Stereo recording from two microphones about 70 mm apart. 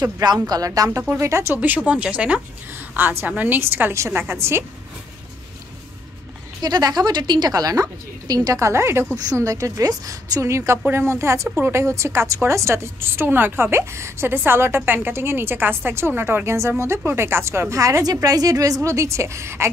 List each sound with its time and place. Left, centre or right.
0.2 s a woman's voice: right
1.5 s a woman's voice: right
6.6 s a woman's voice: right
8.5 s a woman's voice: right
9.1 s a woman's voice: right
18.0 s a woman's voice: right